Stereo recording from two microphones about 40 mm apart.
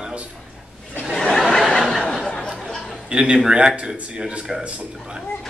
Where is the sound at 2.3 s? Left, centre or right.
Centre.